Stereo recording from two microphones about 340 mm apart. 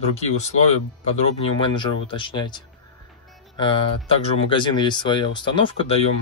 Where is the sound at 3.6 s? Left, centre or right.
Centre.